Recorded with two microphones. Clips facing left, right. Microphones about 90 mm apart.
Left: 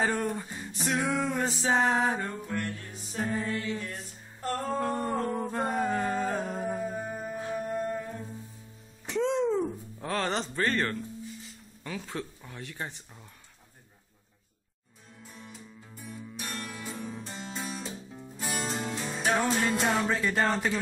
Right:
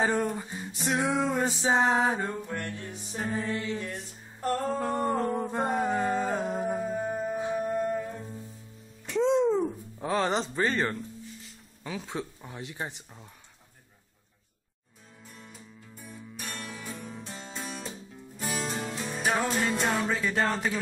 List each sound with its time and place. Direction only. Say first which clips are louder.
0.0 s a sound: right 2 dB; 5° right (ahead or behind)
0.8 s music: right 2 dB; 20° right (ahead or behind)
2.5 s music: left 1 dB; 25° right (ahead or behind)
3.1 s music: left 1 dB; 5° right (ahead or behind)
3.4 s music: right 1 dB; 20° right (ahead or behind)
9.4 s music: right 2 dB; 5° right (ahead or behind)
15.2 s music: left 2 dB; centre (ahead or behind)